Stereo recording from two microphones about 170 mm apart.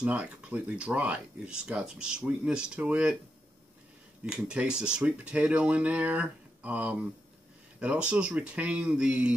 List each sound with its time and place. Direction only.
0.0 s speech: 5° right (ahead or behind)
4.3 s speech: 5° right (ahead or behind)